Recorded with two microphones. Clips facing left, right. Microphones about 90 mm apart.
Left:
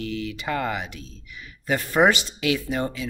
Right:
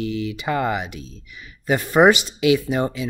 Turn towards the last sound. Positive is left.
turn(degrees=-20)  # may be behind; listen again after turning